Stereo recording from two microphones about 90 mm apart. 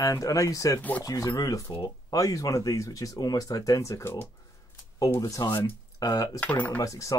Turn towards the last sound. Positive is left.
turn(degrees=35)  # may be behind; listen again after turning